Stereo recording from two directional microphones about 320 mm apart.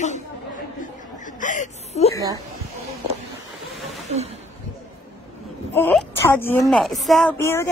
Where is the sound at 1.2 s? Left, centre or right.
Left.